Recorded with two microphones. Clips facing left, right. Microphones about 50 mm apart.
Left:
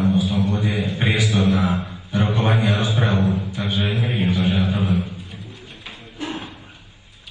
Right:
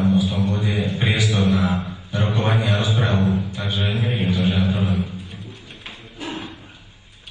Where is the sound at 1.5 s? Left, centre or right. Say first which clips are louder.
Even; left.